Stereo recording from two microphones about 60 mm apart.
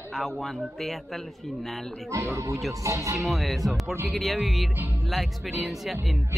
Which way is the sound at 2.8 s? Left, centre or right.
Right.